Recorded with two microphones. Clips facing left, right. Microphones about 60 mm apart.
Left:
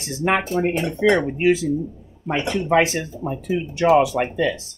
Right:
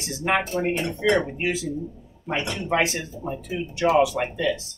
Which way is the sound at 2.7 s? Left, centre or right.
Left.